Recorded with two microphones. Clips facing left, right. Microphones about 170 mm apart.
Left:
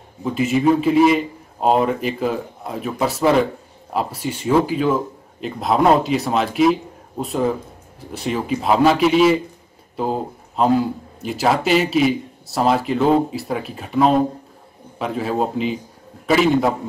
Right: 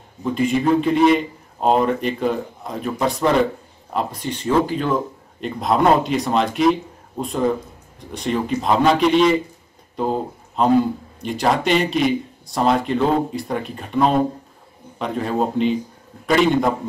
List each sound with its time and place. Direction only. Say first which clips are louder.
0.2 s a man's voice: left 1 dB; 5° left (ahead or behind)